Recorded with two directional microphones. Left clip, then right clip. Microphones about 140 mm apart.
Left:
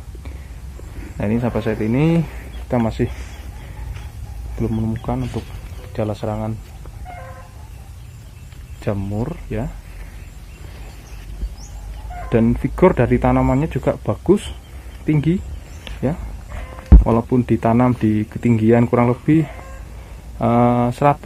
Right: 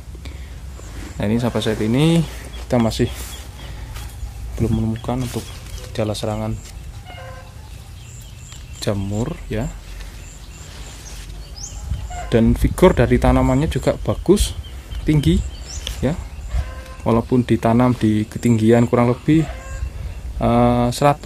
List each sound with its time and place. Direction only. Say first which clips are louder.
1.0 s speech: even; 20° right (ahead or behind)
4.6 s speech: right 1 dB; 15° right (ahead or behind)
8.8 s speech: right 1 dB; 20° right (ahead or behind)
12.3 s speech: right 1 dB; 25° right (ahead or behind)
15.0 s speech: right 1 dB; 30° right (ahead or behind)
15.9 s a sound: right 5 dB; 40° right (ahead or behind)
17.0 s speech: right 1 dB; 25° right (ahead or behind)